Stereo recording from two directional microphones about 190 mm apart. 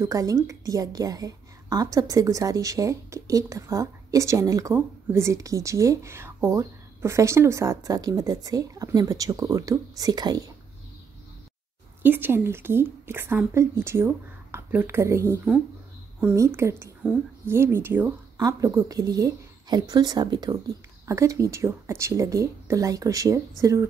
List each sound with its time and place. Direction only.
0.0 s a woman's voice: 15° right (ahead or behind)
12.0 s a woman's voice: 10° right (ahead or behind)